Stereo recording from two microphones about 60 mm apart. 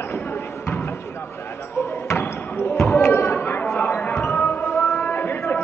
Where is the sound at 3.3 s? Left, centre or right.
Left.